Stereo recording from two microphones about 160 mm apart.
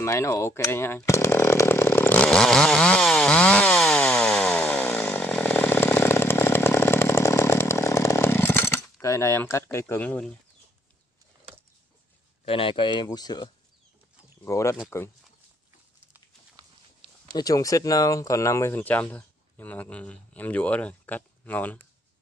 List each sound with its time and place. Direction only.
0.0 s chainsaw: 15° left (ahead or behind)
12.4 s speech: 35° left (ahead or behind); by 14.8 s 15° left (ahead or behind)
17.3 s speech: 25° left (ahead or behind)